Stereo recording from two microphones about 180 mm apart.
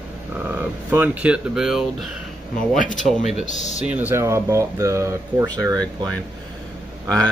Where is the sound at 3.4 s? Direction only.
40° left (ahead or behind).